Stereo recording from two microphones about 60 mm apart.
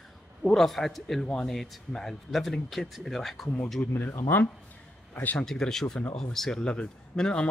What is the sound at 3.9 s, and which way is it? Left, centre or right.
Speech, left.